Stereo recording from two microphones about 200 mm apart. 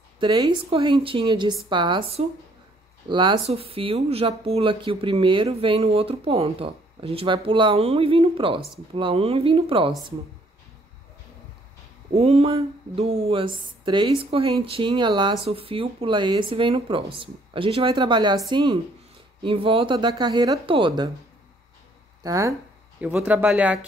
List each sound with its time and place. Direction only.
0.2 s speech: 20° right (ahead or behind)
12.1 s speech: 30° right (ahead or behind)
22.2 s speech: 15° right (ahead or behind)